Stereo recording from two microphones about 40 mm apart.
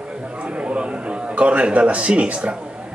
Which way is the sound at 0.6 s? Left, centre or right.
Right.